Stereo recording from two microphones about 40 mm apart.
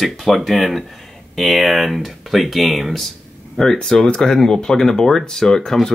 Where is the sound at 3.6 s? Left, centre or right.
Centre.